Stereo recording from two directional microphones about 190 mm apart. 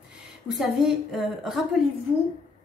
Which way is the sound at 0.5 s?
Centre (ahead or behind).